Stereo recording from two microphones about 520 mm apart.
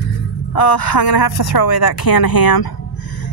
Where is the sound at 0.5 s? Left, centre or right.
Left.